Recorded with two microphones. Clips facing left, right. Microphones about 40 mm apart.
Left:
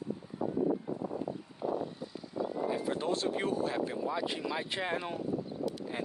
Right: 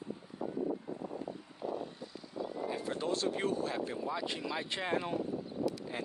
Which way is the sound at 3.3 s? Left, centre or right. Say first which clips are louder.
Left 2 dB; centre.